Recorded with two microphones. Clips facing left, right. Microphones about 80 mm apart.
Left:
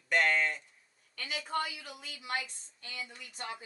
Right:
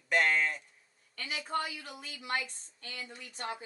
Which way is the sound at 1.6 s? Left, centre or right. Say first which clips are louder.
Right 1 dB; right.